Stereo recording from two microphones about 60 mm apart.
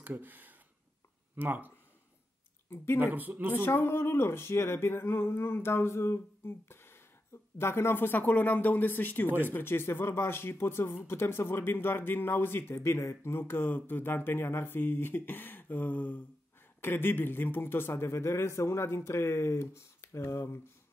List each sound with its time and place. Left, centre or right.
0.0 s speech: right
2.7 s speech: left
3.0 s speech: right
3.5 s speech: left